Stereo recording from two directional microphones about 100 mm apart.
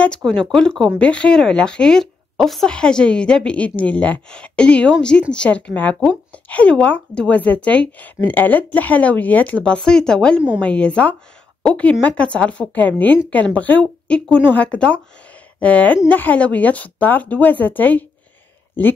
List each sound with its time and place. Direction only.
0.0 s speech: 10° left (ahead or behind)